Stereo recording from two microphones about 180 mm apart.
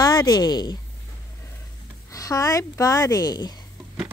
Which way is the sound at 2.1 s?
20° left (ahead or behind).